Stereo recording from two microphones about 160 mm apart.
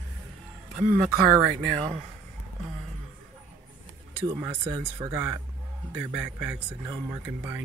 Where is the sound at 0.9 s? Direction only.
65° right (ahead or behind).